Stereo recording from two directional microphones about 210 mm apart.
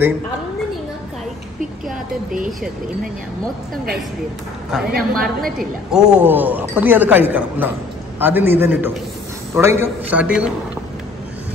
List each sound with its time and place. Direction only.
4.9 s a woman's voice: 45° right (ahead or behind)
5.6 s speech: 5° right (ahead or behind)